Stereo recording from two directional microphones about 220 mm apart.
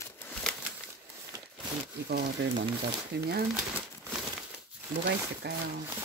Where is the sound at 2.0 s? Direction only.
45° right (ahead or behind).